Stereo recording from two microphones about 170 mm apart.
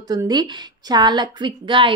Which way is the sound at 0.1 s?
25° right (ahead or behind).